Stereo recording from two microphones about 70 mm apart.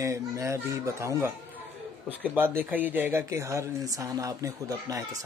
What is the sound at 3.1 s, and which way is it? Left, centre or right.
Speech, right.